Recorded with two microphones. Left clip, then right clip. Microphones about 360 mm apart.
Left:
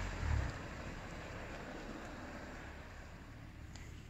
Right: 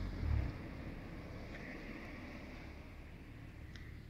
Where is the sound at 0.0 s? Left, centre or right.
Left.